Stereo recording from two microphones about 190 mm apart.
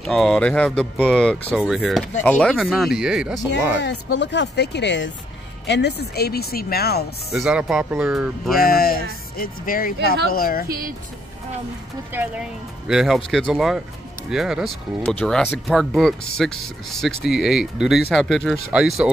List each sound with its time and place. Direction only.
0.0 s speech: 5° left (ahead or behind)
3.8 s speech: 65° left (ahead or behind)
7.3 s speech: 5° right (ahead or behind)
8.5 s speech: 50° left (ahead or behind)
10.7 s speech: 50° right (ahead or behind)
12.1 s speech: 10° right (ahead or behind)